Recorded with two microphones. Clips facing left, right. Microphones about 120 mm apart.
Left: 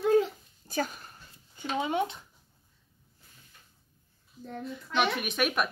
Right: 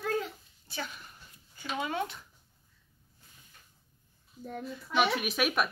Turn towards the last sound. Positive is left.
turn(degrees=0)  # may be behind; listen again after turning